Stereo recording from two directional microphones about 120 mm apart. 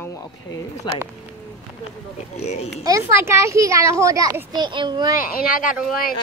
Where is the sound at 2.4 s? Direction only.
65° left (ahead or behind).